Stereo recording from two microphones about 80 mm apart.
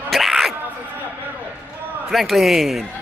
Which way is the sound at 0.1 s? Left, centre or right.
Centre.